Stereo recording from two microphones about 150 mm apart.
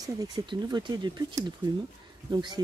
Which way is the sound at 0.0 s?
25° right (ahead or behind).